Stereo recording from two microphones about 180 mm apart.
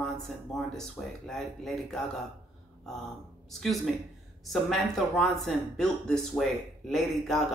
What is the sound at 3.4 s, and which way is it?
Speech, centre (ahead or behind).